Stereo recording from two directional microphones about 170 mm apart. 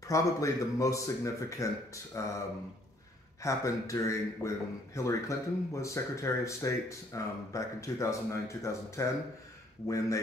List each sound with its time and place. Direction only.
0.0 s speech: 20° left (ahead or behind)
3.4 s speech: 20° left (ahead or behind)